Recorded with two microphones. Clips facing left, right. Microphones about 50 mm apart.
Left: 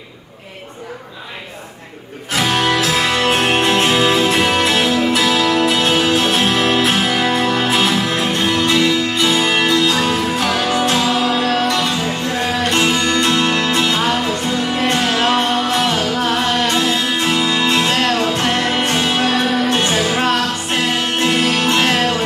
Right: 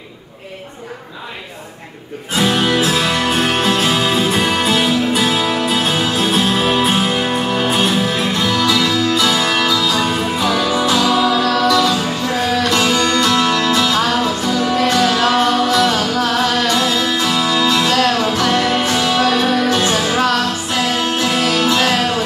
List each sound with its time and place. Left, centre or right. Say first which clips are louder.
2.3 s music: right 1 dB; left
3.0 s music: left 1 dB; left
8.4 s music: left 1 dB; left
9.7 s music: left 1 dB; left
11.4 s music: right 3 dB; left